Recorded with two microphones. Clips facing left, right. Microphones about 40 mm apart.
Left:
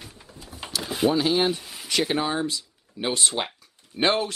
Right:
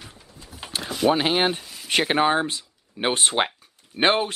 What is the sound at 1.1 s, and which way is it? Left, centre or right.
Speech, right.